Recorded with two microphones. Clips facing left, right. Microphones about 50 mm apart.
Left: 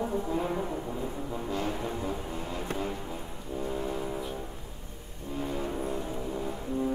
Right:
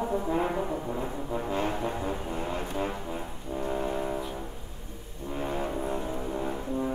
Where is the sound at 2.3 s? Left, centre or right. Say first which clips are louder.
Right 3 dB; right.